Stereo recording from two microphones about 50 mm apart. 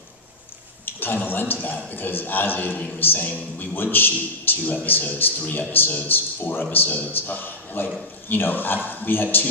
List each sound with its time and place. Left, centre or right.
0.8 s a man's voice: left